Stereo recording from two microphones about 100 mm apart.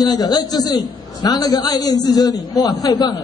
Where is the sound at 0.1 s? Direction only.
40° left (ahead or behind).